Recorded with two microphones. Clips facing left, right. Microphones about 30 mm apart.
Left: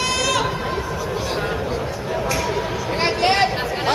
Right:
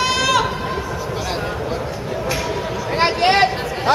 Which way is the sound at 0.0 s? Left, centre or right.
Centre.